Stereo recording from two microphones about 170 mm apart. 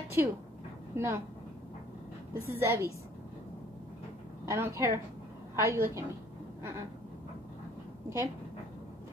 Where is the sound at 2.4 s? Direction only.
15° right (ahead or behind).